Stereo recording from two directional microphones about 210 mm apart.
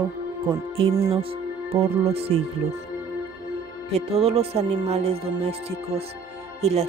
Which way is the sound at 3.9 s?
30° right (ahead or behind).